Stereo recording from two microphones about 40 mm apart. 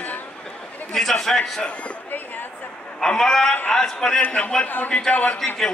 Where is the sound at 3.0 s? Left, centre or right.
Centre.